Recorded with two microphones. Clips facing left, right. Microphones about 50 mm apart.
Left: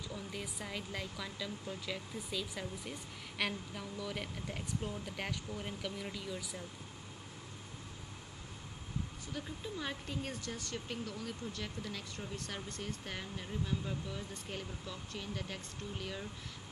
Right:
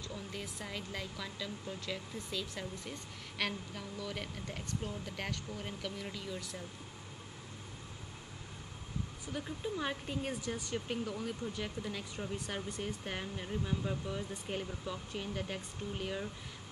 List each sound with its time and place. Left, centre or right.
0.1 s a woman's voice: centre
9.3 s speech: centre